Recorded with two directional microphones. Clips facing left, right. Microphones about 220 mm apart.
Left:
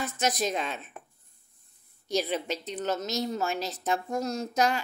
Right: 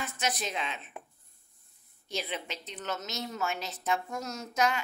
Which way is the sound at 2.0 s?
40° left (ahead or behind).